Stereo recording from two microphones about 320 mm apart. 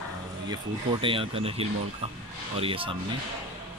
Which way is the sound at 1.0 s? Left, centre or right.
Centre.